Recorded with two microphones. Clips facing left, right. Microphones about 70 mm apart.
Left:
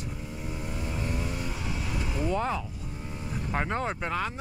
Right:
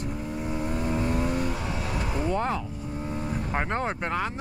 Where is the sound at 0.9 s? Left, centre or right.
Right.